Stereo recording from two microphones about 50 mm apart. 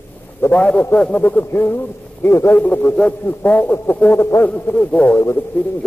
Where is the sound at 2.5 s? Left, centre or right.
Left.